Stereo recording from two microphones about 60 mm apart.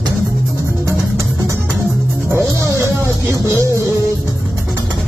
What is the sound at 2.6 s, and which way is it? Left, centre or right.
Music, right.